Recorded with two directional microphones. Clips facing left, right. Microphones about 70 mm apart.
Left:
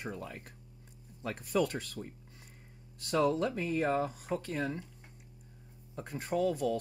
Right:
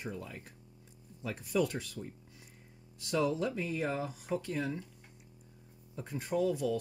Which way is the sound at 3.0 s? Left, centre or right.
Left.